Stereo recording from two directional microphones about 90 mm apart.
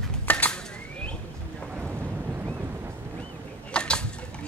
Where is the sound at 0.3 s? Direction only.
20° left (ahead or behind).